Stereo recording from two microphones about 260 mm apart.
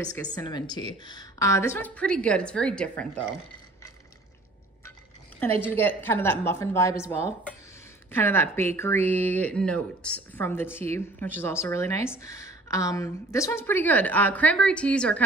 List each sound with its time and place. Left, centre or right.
0.3 s a woman's voice: centre
5.6 s speech: centre